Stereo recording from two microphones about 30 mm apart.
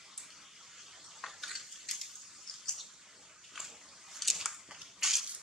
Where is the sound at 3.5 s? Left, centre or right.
Centre.